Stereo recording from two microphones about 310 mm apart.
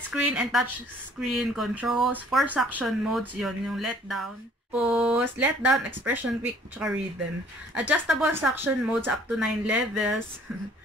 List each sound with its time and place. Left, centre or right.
0.1 s speech: centre